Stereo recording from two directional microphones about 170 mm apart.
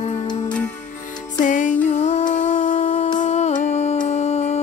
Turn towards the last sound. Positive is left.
turn(degrees=40)  # may be behind; listen again after turning